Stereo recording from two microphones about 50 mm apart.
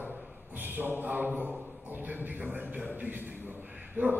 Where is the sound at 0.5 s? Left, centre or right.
Right.